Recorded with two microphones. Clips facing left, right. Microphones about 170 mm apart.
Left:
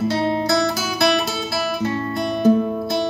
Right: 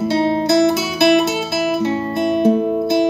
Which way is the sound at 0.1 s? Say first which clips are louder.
Right 4 dB; 25° right (ahead or behind).